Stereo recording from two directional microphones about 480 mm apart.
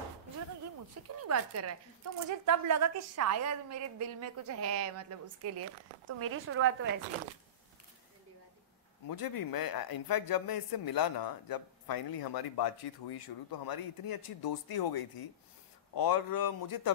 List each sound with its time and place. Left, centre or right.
0.7 s a woman's voice: right
9.0 s a man's voice: left